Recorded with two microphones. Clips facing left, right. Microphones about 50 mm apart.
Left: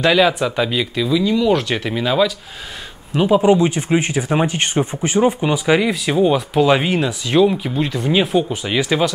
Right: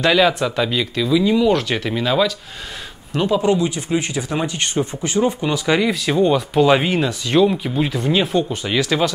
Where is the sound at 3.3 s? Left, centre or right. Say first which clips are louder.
Left 4 dB; centre.